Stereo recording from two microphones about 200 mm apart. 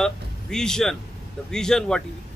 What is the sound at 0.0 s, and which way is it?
Speech, 5° left (ahead or behind).